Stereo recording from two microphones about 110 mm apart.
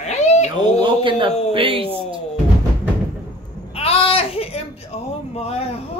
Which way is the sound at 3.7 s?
65° left (ahead or behind).